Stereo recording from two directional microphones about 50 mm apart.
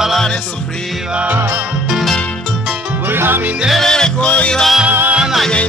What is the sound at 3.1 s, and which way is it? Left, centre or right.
Music, right.